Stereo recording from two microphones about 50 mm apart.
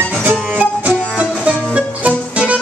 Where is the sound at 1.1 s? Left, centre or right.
Right.